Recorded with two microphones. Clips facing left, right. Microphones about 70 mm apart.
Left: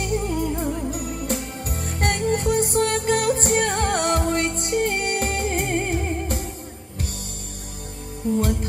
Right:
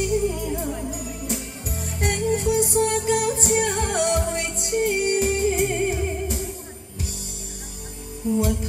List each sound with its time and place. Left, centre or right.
0.0 s music: left
8.2 s music: left